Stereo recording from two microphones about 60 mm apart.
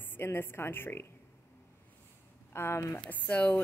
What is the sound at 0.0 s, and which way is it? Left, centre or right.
Speech, left.